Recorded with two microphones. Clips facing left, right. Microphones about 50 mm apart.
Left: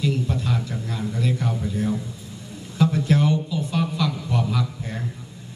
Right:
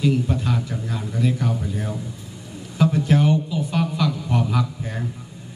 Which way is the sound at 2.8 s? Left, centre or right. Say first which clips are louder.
Right 1 dB; centre.